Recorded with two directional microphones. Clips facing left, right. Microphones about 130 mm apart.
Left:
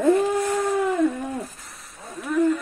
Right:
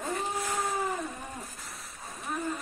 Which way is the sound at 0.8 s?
70° left (ahead or behind).